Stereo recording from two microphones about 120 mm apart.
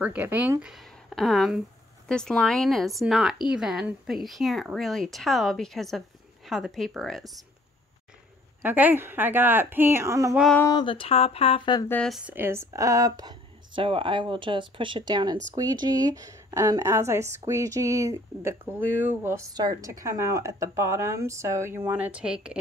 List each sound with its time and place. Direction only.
0.0 s speech: 15° right (ahead or behind)
8.6 s a woman's voice: 15° right (ahead or behind)
10.7 s speech: 40° left (ahead or behind)
12.1 s a woman's voice: 5° right (ahead or behind)
12.4 s speech: 20° right (ahead or behind)
13.8 s a woman's voice: 45° right (ahead or behind); by 19.4 s 20° right (ahead or behind)
19.5 s a woman's voice: 35° right (ahead or behind)
19.9 s a woman's voice: 25° right (ahead or behind); by 22.6 s 5° right (ahead or behind)